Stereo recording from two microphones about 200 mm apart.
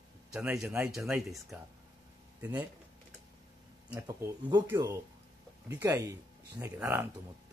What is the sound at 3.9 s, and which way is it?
Speech, 15° right (ahead or behind).